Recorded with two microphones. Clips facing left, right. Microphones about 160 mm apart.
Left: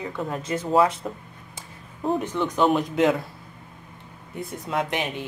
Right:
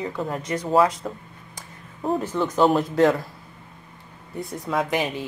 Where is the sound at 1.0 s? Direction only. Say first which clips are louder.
Right 1 dB; 5° left (ahead or behind).